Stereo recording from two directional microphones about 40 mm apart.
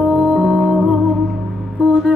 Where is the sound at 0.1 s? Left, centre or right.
Centre.